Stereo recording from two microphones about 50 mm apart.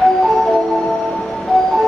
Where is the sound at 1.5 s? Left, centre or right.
Centre.